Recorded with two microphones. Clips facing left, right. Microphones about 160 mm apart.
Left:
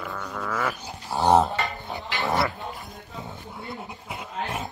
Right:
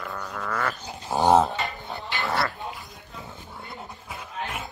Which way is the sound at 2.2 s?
20° left (ahead or behind).